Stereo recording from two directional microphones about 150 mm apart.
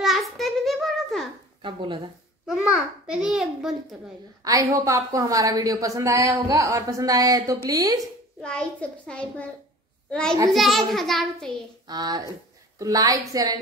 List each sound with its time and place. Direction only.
0.0 s a sound: centre (ahead or behind)
1.6 s speech: 30° right (ahead or behind)
2.4 s a child's voice: 5° right (ahead or behind)
4.5 s a woman's voice: 20° right (ahead or behind)
8.4 s a child's voice: 5° left (ahead or behind)
10.5 s a child's voice: centre (ahead or behind)
11.9 s a woman's voice: 25° right (ahead or behind)